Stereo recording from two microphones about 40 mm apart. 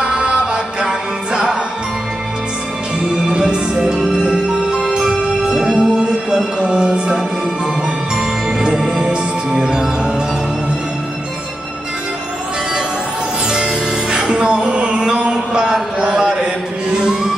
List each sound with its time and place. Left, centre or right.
0.0 s music: right
3.1 s music: centre
5.9 s music: right
8.5 s music: centre
14.1 s music: right
16.0 s mantra: right
16.9 s music: right